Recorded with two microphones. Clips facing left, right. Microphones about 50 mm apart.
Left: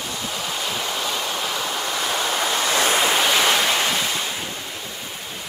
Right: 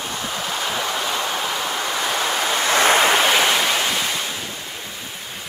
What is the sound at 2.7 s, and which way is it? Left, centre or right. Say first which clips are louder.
Waves: right 5 dB; right.